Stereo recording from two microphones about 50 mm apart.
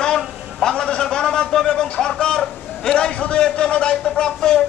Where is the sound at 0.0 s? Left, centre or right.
Centre.